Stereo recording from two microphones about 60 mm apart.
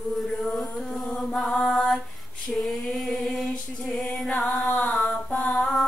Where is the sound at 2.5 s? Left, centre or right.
Centre.